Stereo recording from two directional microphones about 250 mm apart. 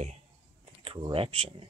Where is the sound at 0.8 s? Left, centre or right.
Right.